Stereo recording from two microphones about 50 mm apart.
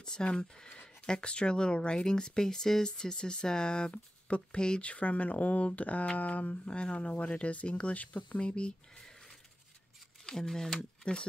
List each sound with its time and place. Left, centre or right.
0.0 s speech: centre; by 6.7 s left
6.7 s speech: left
10.2 s speech: centre